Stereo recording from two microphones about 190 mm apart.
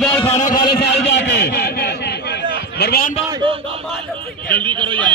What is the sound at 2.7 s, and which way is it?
Speech, 60° left (ahead or behind).